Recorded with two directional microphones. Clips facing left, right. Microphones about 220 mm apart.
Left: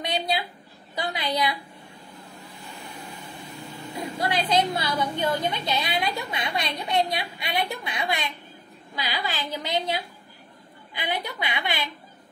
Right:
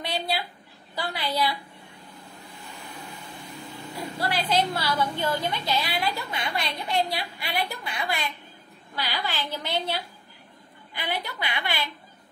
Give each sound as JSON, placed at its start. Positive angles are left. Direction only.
{"t": 0.0, "sound": "a sound", "side_deg": 20}
{"t": 0.9, "sound": "a woman's voice", "side_deg": 15}
{"t": 4.0, "sound": "a woman's voice", "side_deg": 20}
{"t": 11.0, "sound": "a woman's voice", "side_deg": 15}